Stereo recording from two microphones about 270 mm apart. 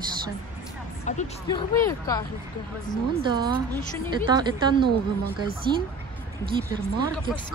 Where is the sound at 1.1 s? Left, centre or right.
Left.